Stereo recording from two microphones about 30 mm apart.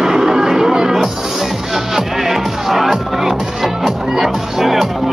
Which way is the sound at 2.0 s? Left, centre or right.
Centre.